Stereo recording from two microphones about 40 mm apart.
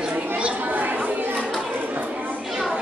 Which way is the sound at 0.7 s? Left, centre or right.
Right.